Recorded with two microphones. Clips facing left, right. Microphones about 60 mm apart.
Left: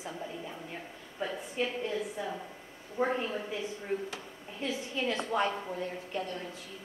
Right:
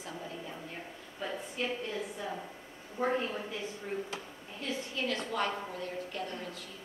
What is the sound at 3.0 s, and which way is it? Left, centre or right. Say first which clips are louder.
Speech: left 1 dB; centre.